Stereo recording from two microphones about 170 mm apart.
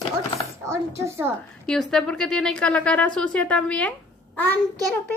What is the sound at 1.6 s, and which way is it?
A woman's voice, 5° left (ahead or behind).